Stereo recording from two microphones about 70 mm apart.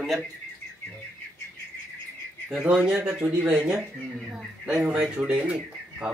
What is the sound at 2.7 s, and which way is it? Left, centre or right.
Speech, centre.